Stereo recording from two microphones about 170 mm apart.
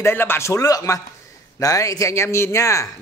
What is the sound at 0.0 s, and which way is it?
Speech, 15° left (ahead or behind).